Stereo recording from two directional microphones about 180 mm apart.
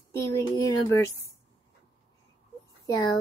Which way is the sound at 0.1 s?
15° left (ahead or behind).